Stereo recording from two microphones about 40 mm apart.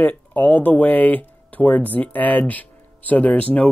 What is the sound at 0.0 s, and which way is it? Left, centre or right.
Speech, left.